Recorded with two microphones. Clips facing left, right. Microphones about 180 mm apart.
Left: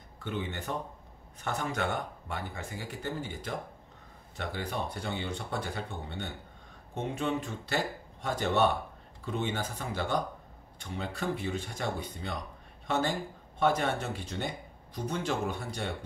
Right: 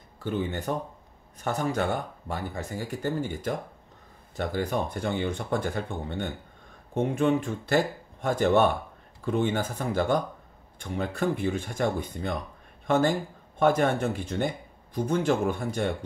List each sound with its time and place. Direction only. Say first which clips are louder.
0.2 s speech: right 6 dB; 40° right (ahead or behind)